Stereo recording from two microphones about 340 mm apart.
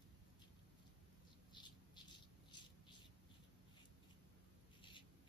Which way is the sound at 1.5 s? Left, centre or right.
Centre.